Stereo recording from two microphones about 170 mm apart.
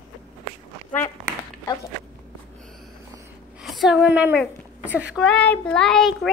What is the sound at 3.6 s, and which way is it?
A woman's voice, centre (ahead or behind).